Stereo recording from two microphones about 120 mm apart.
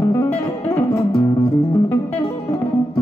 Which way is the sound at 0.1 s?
15° left (ahead or behind).